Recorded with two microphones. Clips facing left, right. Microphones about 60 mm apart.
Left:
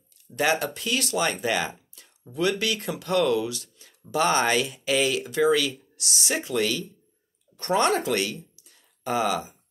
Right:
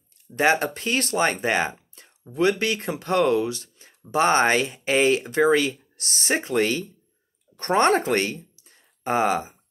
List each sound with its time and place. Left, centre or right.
0.3 s speech: right